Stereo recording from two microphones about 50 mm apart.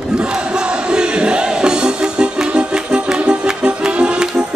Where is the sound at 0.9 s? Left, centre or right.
Centre.